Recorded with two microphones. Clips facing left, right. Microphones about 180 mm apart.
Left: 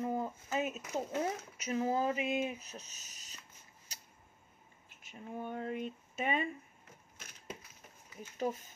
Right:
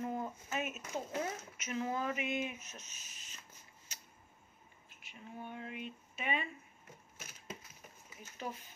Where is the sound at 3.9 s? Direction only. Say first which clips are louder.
Left 1 dB; 40° left (ahead or behind).